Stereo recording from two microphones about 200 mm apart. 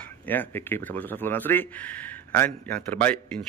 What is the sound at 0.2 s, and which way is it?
A man's voice, 10° left (ahead or behind).